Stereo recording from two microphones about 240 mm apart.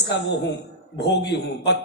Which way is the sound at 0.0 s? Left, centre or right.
Left.